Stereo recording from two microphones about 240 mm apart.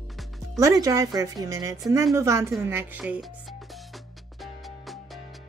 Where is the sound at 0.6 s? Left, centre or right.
Centre.